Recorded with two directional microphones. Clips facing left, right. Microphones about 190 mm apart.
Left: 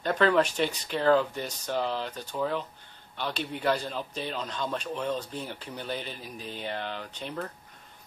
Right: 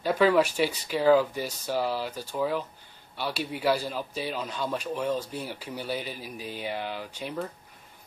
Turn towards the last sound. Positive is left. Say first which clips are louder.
# right 2 dB
turn(degrees=-10)  # may be behind; listen again after turning